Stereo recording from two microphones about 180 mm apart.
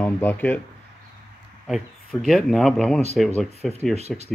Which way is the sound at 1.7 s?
Centre (ahead or behind).